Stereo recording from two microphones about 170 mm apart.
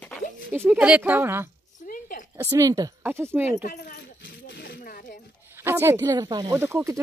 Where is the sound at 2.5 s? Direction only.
20° right (ahead or behind).